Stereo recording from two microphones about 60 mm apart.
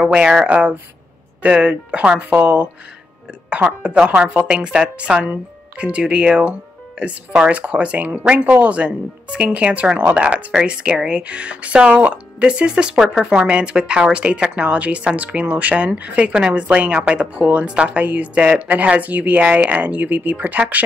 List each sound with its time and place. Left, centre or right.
0.0 s speech: centre
3.8 s speech: centre